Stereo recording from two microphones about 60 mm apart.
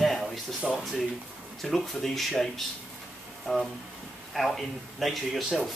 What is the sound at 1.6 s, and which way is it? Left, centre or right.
A man's voice, centre.